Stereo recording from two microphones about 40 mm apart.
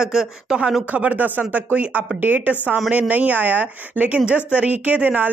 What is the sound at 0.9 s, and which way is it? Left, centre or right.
Speech, right.